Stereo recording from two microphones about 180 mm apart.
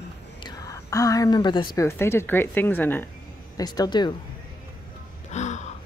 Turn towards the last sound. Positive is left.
turn(degrees=40)  # may be behind; listen again after turning